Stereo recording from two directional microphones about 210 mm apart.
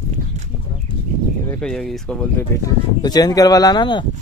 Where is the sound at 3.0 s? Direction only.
20° left (ahead or behind).